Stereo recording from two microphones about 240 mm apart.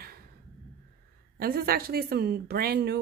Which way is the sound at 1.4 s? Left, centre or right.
Right.